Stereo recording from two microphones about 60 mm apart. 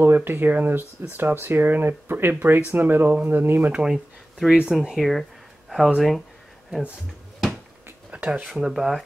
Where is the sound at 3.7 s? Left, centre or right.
Centre.